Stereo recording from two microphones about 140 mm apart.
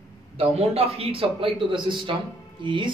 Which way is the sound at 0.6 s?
45° right (ahead or behind).